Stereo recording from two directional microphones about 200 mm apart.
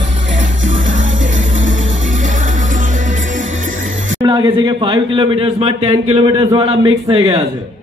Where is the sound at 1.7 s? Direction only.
40° right (ahead or behind).